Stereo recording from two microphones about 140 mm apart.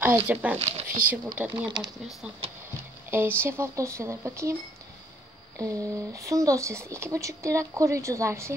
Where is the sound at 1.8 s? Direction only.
30° right (ahead or behind).